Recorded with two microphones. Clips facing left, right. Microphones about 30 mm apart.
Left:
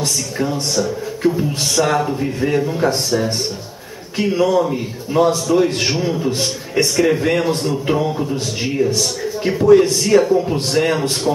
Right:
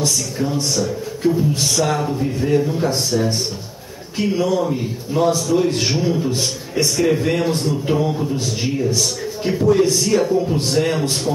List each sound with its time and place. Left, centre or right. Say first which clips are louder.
0.0 s a man's voice: even; left